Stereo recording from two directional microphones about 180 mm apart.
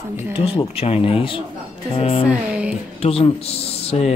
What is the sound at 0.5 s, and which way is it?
Speech, 30° left (ahead or behind).